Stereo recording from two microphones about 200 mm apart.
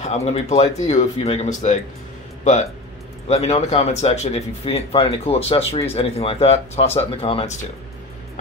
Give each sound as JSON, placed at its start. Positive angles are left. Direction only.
{"t": 0.0, "sound": "speech", "side_deg": 30}
{"t": 3.3, "sound": "speech", "side_deg": 30}